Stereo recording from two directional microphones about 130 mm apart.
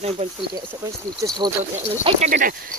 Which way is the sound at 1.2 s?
25° right (ahead or behind).